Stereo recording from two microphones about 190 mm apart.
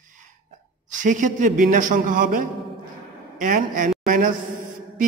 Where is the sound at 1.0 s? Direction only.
40° right (ahead or behind).